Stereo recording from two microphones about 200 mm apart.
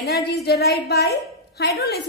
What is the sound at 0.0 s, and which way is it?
A woman's voice, 55° left (ahead or behind).